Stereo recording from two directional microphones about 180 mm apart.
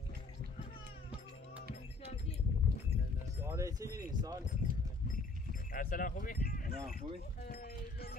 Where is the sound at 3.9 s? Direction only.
20° right (ahead or behind).